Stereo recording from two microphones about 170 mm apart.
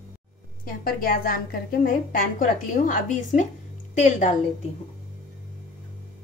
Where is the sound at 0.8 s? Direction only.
55° left (ahead or behind).